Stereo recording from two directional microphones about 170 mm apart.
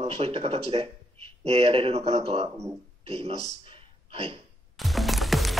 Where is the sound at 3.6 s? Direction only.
35° right (ahead or behind).